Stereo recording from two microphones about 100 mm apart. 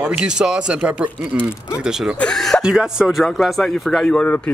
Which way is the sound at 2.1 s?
5° left (ahead or behind).